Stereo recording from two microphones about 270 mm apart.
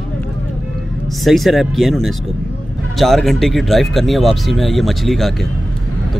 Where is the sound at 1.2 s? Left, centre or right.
Centre.